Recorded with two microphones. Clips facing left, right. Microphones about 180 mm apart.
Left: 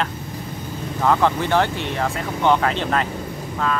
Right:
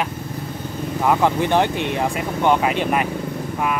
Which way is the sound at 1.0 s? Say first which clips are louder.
Even; 15° right (ahead or behind).